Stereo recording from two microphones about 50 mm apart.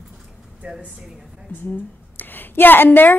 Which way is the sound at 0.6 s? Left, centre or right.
Right.